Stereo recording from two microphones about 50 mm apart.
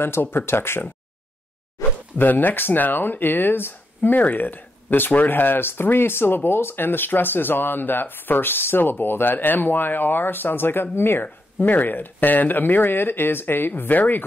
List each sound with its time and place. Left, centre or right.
0.0 s speech: left
1.8 s speech: left